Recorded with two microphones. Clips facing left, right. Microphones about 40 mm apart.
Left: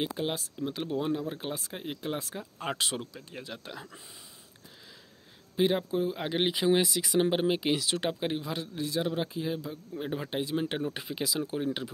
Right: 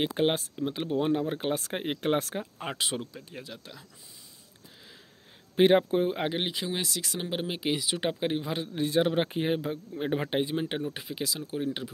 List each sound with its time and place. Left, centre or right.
0.1 s a man's voice: right
0.6 s speech: centre; by 2.3 s right
2.6 s speech: centre
3.2 s speech: centre
3.5 s speech: centre
5.6 s a man's voice: right
6.3 s speech: centre
8.7 s a man's voice: right
9.9 s speech: right
10.5 s speech: centre
10.9 s speech: centre